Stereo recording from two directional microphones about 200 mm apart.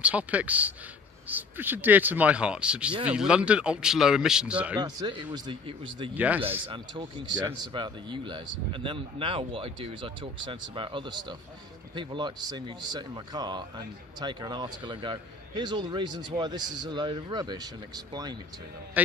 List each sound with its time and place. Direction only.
0.0 s a man's voice: 5° right (ahead or behind)
4.7 s speech: 20° right (ahead or behind)
6.1 s speech: 10° right (ahead or behind)
6.7 s speech: 25° right (ahead or behind)
19.0 s speech: 10° right (ahead or behind)